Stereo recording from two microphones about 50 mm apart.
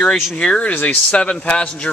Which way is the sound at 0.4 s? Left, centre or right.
Left.